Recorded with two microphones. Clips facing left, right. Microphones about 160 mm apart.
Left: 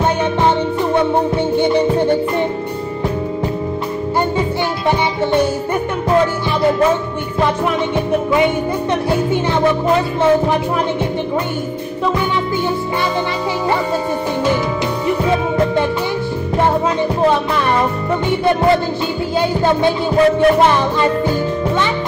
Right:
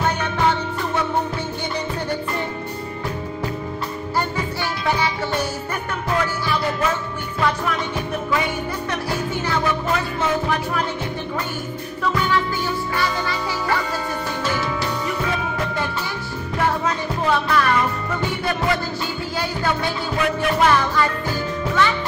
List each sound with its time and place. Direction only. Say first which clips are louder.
0.0 s music: left 6 dB; 25° left (ahead or behind)
4.4 s music: left 7 dB; 25° left (ahead or behind)
7.3 s music: left 5 dB; 25° left (ahead or behind)
9.1 s music: left 6 dB; 25° left (ahead or behind)
15.0 s music: left 8 dB; 25° left (ahead or behind)
17.3 s music: left 3 dB; 25° left (ahead or behind)